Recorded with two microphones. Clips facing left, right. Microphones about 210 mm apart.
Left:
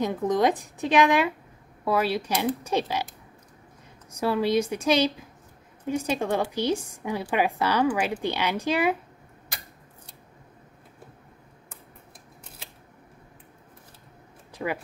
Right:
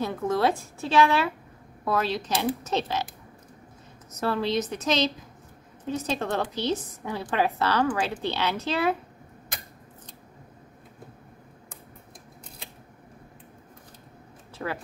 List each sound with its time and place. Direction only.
0.0 s a woman's voice: 15° left (ahead or behind)
4.1 s a woman's voice: 10° left (ahead or behind)
14.6 s speech: 10° left (ahead or behind)